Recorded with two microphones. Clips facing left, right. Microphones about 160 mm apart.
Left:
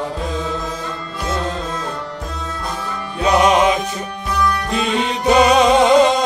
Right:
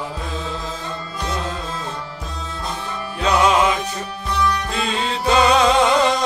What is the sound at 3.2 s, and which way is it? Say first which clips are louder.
Music: left 3 dB; 20° left (ahead or behind).